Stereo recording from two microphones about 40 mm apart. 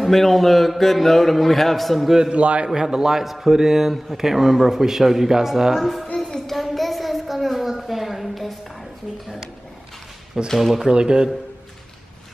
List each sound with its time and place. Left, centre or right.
0.0 s speech: centre
2.3 s a man's voice: right
2.7 s a man's voice: centre
5.8 s speech: centre
6.2 s a sound: centre
10.6 s a man's voice: centre
10.9 s a man's voice: centre